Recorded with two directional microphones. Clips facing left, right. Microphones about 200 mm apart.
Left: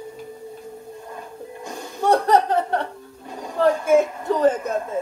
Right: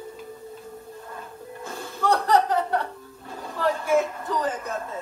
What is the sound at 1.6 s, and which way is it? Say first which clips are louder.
Music: left 3 dB; 20° left (ahead or behind).